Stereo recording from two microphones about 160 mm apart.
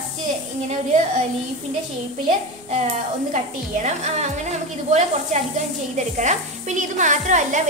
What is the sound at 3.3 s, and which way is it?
A woman's voice, 45° right (ahead or behind).